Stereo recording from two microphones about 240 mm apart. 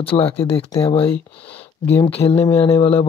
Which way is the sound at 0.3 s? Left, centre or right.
Left.